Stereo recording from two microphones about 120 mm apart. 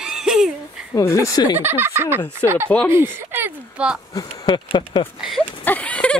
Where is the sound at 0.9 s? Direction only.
25° left (ahead or behind).